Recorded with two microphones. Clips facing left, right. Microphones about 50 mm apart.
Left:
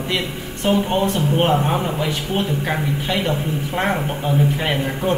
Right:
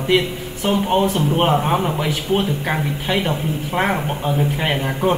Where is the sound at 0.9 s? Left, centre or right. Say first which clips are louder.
Right 2 dB; centre.